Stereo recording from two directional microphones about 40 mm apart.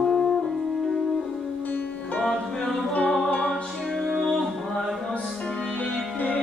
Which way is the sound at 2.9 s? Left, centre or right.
Left.